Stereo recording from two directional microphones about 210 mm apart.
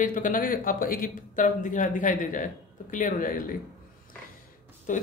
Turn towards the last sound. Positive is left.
turn(degrees=40)  # may be behind; listen again after turning